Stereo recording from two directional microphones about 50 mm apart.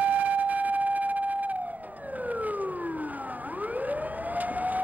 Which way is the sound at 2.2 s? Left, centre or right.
Right.